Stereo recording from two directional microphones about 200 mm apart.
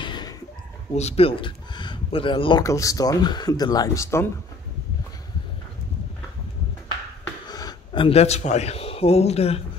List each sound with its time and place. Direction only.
0.0 s a sound: 25° left (ahead or behind)
0.9 s speech: 30° left (ahead or behind); by 4.3 s 15° left (ahead or behind)
7.4 s speech: 20° left (ahead or behind)